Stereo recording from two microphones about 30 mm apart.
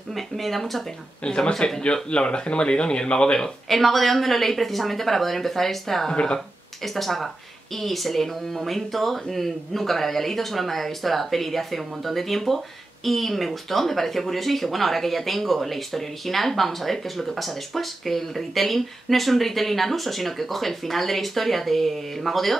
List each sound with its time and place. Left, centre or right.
0.1 s speech: centre
1.2 s speech: left
1.5 s a woman's voice: centre
2.0 s speech: left
3.6 s a woman's voice: centre
6.1 s speech: left
6.8 s speech: centre